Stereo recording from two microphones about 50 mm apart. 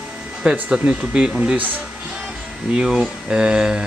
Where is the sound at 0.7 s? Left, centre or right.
Centre.